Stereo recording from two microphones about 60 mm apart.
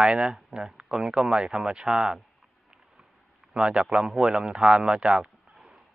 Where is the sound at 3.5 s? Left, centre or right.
Centre.